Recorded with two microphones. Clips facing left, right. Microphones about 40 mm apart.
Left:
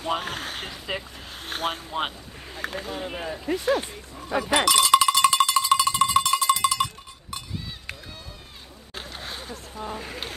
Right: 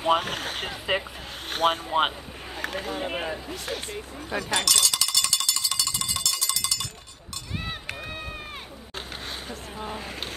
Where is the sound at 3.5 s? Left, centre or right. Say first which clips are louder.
Left 10 dB; centre.